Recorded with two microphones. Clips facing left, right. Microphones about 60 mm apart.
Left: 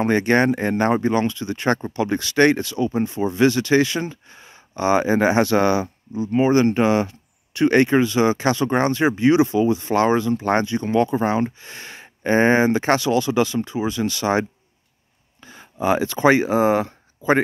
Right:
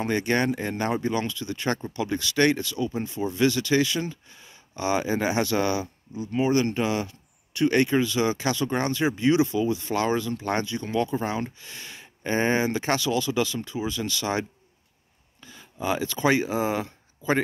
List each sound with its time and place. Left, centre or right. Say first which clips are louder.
0.0 s speech: left 7 dB; left
15.4 s speech: left 7 dB; left